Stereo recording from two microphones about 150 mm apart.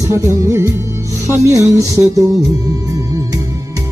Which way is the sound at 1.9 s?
20° left (ahead or behind).